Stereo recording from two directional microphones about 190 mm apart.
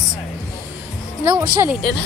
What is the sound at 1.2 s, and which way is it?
Speech, 15° right (ahead or behind).